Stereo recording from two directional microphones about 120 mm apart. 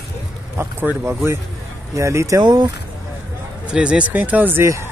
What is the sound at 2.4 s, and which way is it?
Speech, 40° right (ahead or behind).